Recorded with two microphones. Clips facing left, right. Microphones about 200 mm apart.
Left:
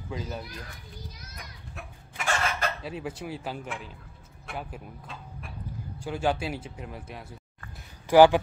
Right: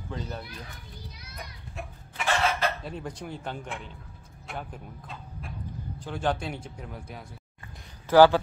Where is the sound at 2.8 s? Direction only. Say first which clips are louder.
Left 2 dB; 5° left (ahead or behind).